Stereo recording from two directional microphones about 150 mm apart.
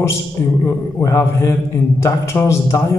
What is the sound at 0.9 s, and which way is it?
A man's voice, 20° left (ahead or behind).